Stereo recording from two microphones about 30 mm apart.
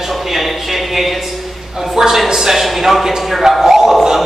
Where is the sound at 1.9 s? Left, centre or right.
Centre.